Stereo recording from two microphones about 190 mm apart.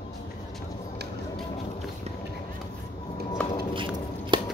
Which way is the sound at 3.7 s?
25° right (ahead or behind).